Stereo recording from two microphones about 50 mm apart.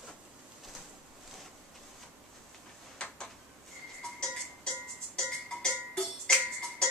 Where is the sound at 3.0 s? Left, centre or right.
Left.